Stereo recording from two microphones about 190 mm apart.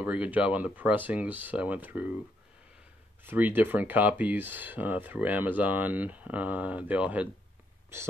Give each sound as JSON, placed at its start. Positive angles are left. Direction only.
{"t": 0.0, "sound": "speech", "side_deg": -5}
{"t": 3.3, "sound": "speech", "side_deg": -10}